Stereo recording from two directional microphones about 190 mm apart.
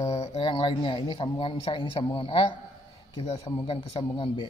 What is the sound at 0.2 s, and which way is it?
Speech, 30° left (ahead or behind).